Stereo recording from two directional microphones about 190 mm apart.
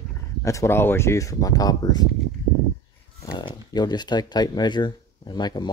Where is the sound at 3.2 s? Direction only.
25° left (ahead or behind).